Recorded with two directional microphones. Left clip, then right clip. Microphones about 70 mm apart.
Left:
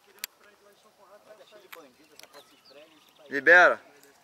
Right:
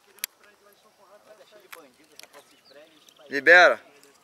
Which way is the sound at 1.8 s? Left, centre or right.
Centre.